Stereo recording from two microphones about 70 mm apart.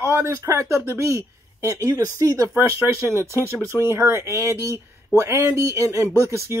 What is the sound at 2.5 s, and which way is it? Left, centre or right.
Speech, right.